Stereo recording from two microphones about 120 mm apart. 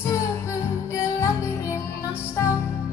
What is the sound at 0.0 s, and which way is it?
Music, 20° left (ahead or behind).